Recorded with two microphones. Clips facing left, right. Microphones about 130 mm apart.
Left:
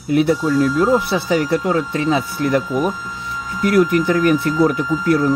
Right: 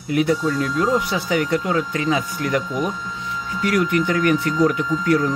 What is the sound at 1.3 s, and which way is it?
Speech, 30° left (ahead or behind).